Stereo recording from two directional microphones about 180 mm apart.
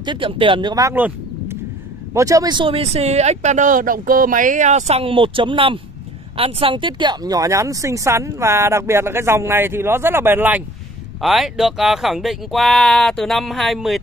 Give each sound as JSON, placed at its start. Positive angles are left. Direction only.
{"t": 0.0, "sound": "speech", "side_deg": -25}